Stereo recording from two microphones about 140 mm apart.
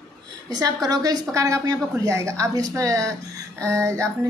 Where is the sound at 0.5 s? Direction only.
25° right (ahead or behind).